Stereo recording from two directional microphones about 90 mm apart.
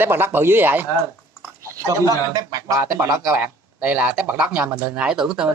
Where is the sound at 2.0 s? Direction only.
40° right (ahead or behind).